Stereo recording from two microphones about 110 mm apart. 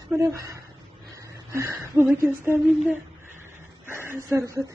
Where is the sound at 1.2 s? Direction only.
25° right (ahead or behind).